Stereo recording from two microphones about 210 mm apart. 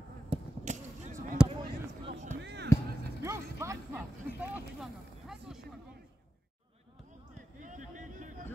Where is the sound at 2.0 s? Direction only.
35° right (ahead or behind).